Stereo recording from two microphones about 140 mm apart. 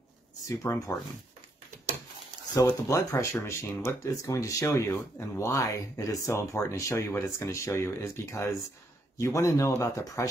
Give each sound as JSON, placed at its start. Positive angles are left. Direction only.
{"t": 0.5, "sound": "speech", "side_deg": 25}
{"t": 2.5, "sound": "speech", "side_deg": 20}